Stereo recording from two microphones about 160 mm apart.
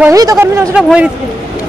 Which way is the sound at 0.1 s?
20° right (ahead or behind).